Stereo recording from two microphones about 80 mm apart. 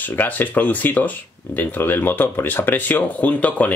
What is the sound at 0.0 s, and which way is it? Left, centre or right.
Speech, left.